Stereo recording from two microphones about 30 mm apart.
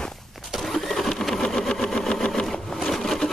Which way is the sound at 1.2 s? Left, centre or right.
Centre.